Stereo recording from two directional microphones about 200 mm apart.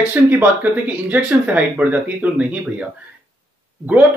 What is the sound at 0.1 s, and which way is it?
Speech, 10° right (ahead or behind).